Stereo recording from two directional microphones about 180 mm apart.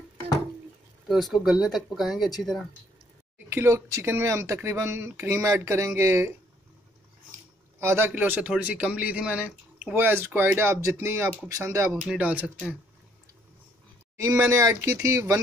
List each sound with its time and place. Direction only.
1.0 s speech: centre (ahead or behind)
3.3 s speech: 15° right (ahead or behind)
7.8 s speech: 15° right (ahead or behind)
14.2 s speech: 15° right (ahead or behind)